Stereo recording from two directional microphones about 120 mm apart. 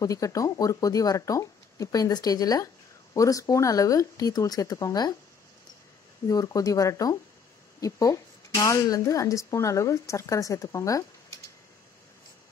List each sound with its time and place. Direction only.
0.0 s a woman's voice: 30° left (ahead or behind)
6.2 s a woman's voice: 30° left (ahead or behind)